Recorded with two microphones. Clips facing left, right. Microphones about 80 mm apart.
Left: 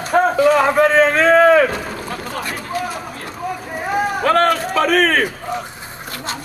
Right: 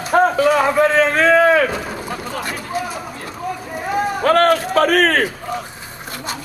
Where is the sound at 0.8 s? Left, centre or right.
Left.